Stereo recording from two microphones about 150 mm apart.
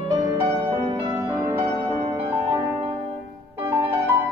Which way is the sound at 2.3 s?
40° right (ahead or behind).